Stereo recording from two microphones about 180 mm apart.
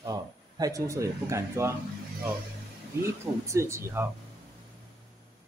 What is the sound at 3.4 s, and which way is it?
Speech, 15° right (ahead or behind).